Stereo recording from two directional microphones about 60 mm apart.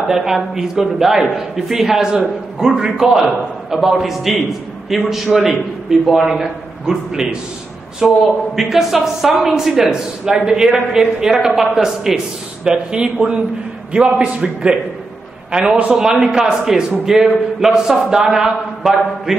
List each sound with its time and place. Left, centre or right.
0.1 s a man's voice: centre